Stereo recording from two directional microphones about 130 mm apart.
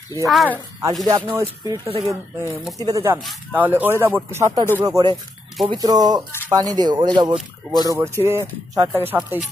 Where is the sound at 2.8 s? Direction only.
25° right (ahead or behind).